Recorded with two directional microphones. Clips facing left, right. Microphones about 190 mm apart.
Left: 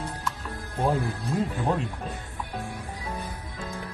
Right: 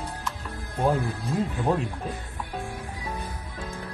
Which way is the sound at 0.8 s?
Centre (ahead or behind).